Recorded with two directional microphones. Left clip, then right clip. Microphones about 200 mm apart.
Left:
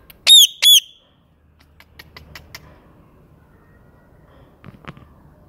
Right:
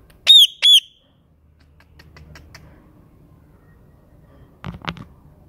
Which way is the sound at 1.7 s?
Centre (ahead or behind).